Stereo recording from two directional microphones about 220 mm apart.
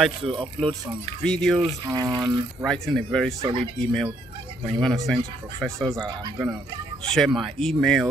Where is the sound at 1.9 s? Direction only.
20° right (ahead or behind).